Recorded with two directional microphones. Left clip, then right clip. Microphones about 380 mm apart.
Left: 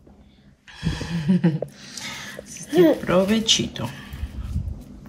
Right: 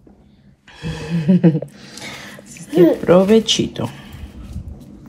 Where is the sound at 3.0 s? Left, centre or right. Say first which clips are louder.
Right 7 dB; centre.